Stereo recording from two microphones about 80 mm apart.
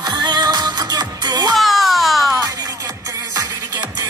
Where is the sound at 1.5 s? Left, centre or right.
Centre.